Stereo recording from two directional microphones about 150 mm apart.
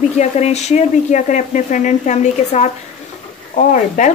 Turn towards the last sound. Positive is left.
turn(degrees=55)  # may be behind; listen again after turning